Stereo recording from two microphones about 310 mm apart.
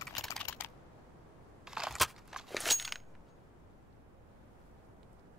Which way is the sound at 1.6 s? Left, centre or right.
Centre.